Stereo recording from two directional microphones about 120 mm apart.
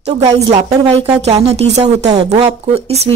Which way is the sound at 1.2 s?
65° right (ahead or behind).